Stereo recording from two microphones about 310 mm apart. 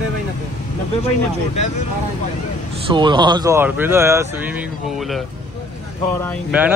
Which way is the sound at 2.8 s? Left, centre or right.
Centre.